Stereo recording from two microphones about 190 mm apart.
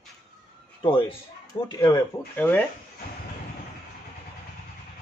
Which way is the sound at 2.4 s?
10° left (ahead or behind).